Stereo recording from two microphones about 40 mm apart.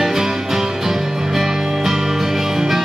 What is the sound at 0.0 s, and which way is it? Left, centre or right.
Music, centre.